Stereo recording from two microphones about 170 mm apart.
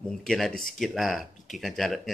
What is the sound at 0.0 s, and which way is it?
Speech, centre (ahead or behind).